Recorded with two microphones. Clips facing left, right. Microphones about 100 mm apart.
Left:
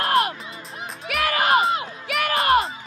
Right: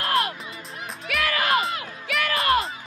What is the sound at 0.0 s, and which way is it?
Music, 30° left (ahead or behind).